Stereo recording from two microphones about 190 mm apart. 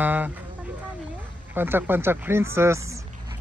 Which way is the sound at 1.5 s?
10° right (ahead or behind).